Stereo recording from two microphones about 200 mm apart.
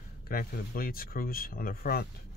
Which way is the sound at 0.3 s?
45° left (ahead or behind).